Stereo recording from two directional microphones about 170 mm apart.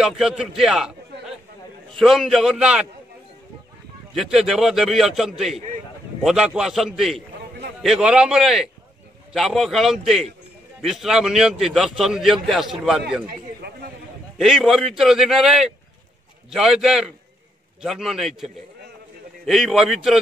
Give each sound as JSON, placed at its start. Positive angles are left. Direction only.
{"t": 0.0, "sound": "a man's voice", "side_deg": -5}
{"t": 2.0, "sound": "a man's voice", "side_deg": 0}
{"t": 4.1, "sound": "a man's voice", "side_deg": 0}
{"t": 13.6, "sound": "a sound", "side_deg": -75}
{"t": 14.4, "sound": "a man's voice", "side_deg": 0}